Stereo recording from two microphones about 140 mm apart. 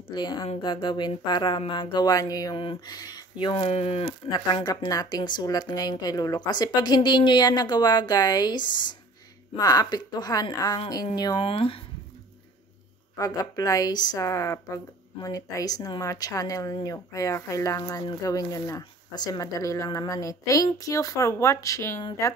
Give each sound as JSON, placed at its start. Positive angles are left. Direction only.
{"t": 0.1, "sound": "a woman's voice", "side_deg": 35}
{"t": 4.6, "sound": "a woman's voice", "side_deg": 30}
{"t": 11.4, "sound": "speech", "side_deg": 40}
{"t": 13.2, "sound": "a woman's voice", "side_deg": 25}